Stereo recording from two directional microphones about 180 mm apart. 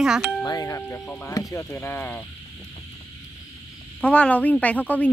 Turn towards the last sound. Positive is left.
turn(degrees=10)  # may be behind; listen again after turning